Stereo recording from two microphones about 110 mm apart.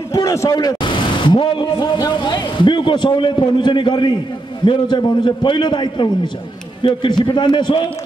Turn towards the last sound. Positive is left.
turn(degrees=45)  # may be behind; listen again after turning